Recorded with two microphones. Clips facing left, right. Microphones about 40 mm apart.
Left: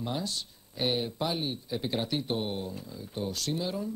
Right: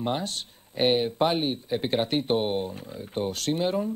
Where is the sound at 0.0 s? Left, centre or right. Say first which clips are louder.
Right 5 dB; right.